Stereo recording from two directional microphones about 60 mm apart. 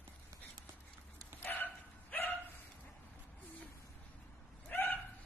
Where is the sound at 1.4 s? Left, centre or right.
Left.